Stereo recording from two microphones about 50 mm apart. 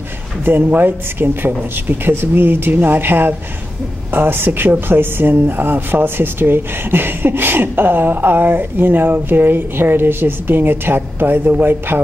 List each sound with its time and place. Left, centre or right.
0.5 s speech: right